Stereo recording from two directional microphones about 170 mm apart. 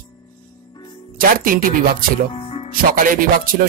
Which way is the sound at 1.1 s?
55° right (ahead or behind).